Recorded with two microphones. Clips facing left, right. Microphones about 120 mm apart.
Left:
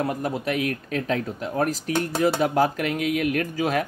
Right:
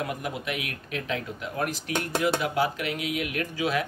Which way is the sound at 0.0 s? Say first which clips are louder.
Left 6 dB; 35° left (ahead or behind).